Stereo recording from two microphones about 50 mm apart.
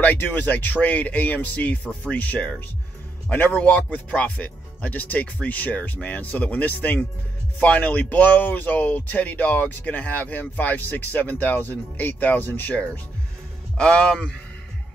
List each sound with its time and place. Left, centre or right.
0.0 s speech: left
13.7 s a man's voice: centre